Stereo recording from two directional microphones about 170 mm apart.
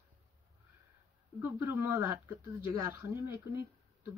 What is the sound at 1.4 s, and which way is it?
Speech, 15° right (ahead or behind).